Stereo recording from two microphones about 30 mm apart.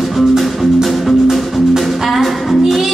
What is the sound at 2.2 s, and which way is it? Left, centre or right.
Music, centre.